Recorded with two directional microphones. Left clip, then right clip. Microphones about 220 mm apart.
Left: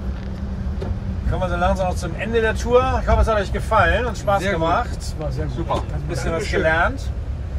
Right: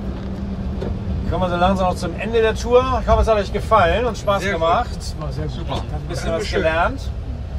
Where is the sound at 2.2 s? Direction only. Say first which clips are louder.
Right 2 dB; 45° right (ahead or behind).